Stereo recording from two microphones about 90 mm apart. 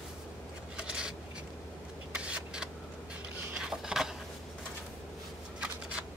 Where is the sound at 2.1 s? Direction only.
10° right (ahead or behind).